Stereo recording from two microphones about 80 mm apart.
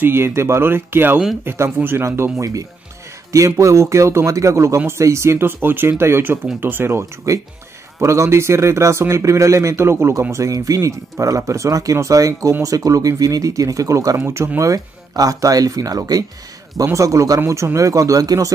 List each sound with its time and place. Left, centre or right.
0.0 s speech: right
10.3 s speech: right
14.6 s speech: right